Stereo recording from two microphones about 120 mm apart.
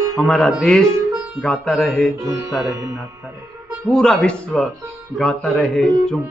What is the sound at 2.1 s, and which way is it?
Music, 25° right (ahead or behind).